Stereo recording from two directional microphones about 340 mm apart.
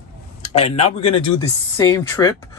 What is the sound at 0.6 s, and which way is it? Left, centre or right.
Speech, centre.